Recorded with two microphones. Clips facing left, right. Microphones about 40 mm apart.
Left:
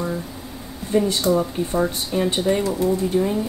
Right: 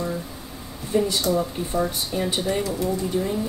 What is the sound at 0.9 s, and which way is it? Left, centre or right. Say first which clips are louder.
A woman's voice: left 3 dB; centre.